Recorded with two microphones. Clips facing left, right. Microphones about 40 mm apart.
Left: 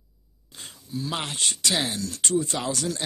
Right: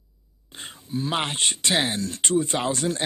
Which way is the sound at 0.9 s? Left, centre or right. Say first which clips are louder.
Right 4 dB; right.